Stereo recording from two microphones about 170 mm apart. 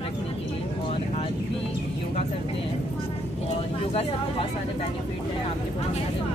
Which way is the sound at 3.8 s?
35° left (ahead or behind).